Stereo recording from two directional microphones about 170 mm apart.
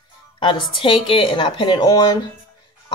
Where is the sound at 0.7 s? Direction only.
30° left (ahead or behind).